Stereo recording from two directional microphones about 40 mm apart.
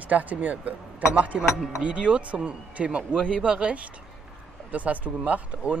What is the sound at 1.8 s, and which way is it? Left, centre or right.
Speech, right.